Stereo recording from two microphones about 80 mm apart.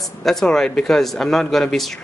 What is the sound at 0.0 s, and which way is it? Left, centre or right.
Speech, centre.